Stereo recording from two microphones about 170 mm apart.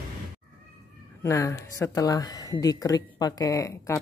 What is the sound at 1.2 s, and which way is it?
Speech, 15° left (ahead or behind).